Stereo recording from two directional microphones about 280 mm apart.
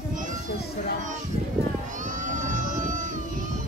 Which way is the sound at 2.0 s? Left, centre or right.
Right.